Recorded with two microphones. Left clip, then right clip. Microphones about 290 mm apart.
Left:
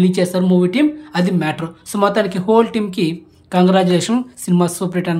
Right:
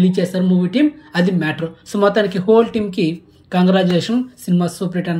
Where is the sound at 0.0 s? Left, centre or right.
Centre.